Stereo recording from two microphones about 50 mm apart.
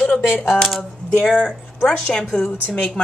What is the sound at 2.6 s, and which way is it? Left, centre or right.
Speech, left.